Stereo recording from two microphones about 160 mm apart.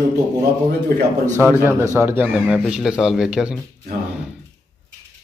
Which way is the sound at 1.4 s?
15° right (ahead or behind).